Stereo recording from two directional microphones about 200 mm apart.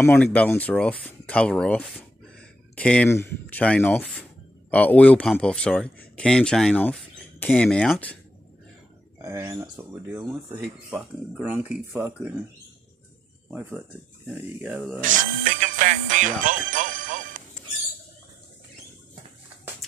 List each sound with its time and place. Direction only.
0.0 s speech: 10° left (ahead or behind)
9.2 s speech: 15° right (ahead or behind)
13.5 s speech: 5° right (ahead or behind)
15.0 s music: 40° right (ahead or behind)